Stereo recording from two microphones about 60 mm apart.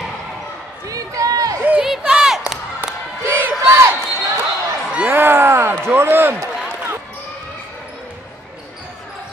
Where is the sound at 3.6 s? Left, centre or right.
Right.